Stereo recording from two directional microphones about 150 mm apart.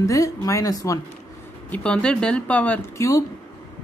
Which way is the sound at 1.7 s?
5° left (ahead or behind).